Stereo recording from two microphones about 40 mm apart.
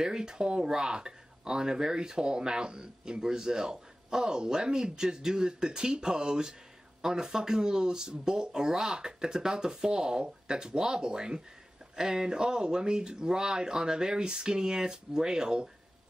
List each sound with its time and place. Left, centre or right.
0.0 s speech: centre